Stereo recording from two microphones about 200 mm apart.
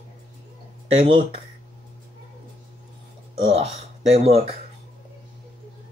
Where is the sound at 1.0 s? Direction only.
25° right (ahead or behind).